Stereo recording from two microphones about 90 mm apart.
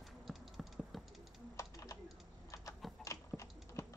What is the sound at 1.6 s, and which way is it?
Typing, 35° left (ahead or behind).